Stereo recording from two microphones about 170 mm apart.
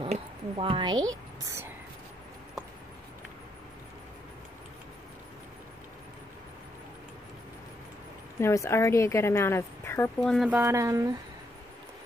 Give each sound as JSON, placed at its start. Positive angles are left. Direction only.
{"t": 0.0, "sound": "a sound", "side_deg": -35}
{"t": 8.4, "sound": "a woman's voice", "side_deg": 15}
{"t": 10.2, "sound": "speech", "side_deg": 0}
{"t": 10.5, "sound": "speech", "side_deg": -15}